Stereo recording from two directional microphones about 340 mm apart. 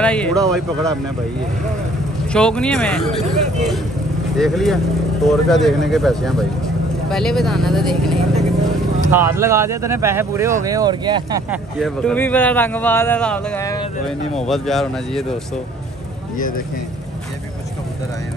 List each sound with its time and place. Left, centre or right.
0.0 s speech: centre
2.3 s speech: centre
11.8 s speech: centre
16.3 s speech: left